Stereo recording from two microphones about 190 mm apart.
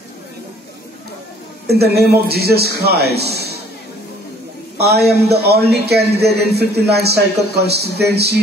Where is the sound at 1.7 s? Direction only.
55° right (ahead or behind).